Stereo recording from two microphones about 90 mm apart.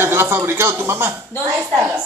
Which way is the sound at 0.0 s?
25° right (ahead or behind).